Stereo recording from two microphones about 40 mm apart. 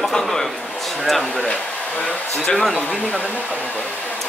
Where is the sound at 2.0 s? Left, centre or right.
Left.